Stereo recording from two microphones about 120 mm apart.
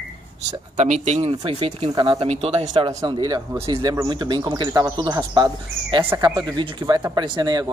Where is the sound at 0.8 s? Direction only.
75° right (ahead or behind).